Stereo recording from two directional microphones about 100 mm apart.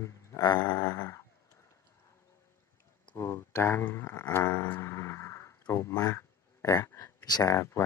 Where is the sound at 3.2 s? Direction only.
25° left (ahead or behind).